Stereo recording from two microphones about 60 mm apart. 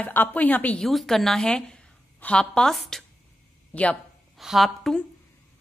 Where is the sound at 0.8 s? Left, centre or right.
Centre.